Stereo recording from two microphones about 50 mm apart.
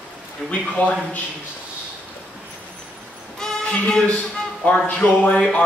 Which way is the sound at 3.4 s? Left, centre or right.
Left.